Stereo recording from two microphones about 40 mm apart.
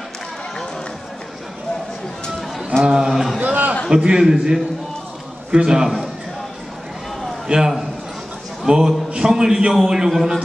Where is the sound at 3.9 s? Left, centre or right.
Centre.